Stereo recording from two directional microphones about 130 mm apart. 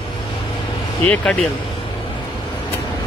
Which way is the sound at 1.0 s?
10° left (ahead or behind).